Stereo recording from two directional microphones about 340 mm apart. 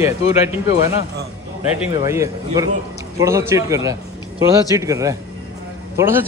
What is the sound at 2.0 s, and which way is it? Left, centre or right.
A man's voice, centre.